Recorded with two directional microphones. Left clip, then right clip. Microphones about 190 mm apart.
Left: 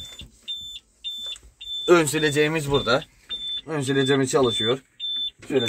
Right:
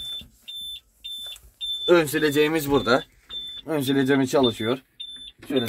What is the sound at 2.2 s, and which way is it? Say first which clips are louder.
Speech: even; 25° right (ahead or behind).